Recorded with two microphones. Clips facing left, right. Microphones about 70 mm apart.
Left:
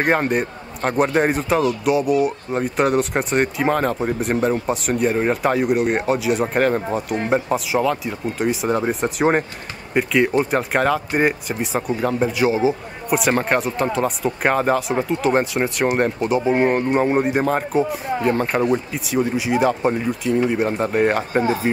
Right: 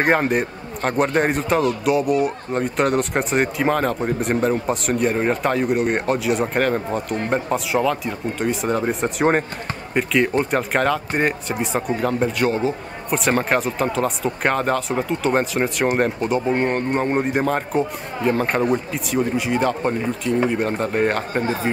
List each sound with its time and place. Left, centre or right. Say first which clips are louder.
0.0 s a man's voice: even; centre